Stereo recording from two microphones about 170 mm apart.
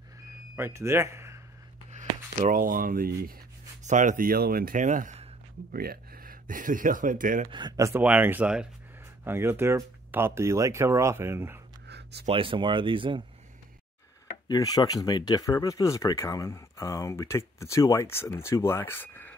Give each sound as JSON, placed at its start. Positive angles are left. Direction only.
{"t": 0.6, "sound": "speech", "side_deg": -15}
{"t": 1.9, "sound": "speech", "side_deg": -45}
{"t": 3.8, "sound": "speech", "side_deg": -45}
{"t": 5.7, "sound": "speech", "side_deg": -60}
{"t": 7.5, "sound": "speech", "side_deg": -25}
{"t": 11.9, "sound": "a sound", "side_deg": -80}
{"t": 12.3, "sound": "speech", "side_deg": -30}
{"t": 14.3, "sound": "speech", "side_deg": 25}